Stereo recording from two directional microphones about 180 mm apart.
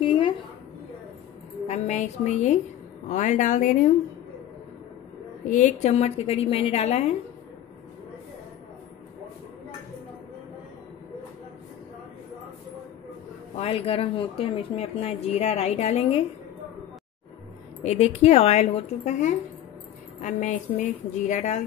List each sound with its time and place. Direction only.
0.0 s a sound: 30° left (ahead or behind)
1.7 s a woman's voice: 40° left (ahead or behind)
5.4 s a woman's voice: 45° left (ahead or behind)
13.6 s a woman's voice: 30° left (ahead or behind)
17.8 s a woman's voice: 35° left (ahead or behind)